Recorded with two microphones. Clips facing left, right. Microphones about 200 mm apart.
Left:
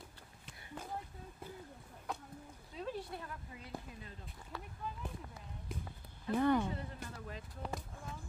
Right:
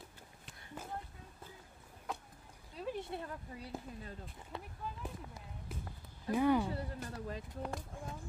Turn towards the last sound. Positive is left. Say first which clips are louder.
# right 1 dB
turn(degrees=-10)  # may be behind; listen again after turning